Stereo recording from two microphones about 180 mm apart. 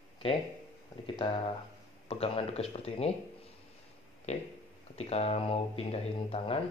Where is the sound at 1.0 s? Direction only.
30° left (ahead or behind).